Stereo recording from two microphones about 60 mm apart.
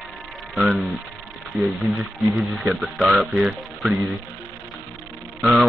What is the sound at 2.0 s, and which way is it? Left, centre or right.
Speech, centre.